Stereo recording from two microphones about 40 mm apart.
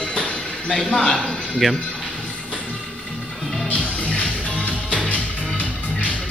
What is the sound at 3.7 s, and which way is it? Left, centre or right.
Music, left.